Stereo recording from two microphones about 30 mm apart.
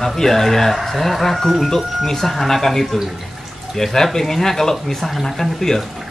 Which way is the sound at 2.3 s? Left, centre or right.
Centre.